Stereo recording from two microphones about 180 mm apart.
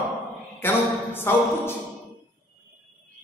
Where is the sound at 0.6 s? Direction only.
10° left (ahead or behind).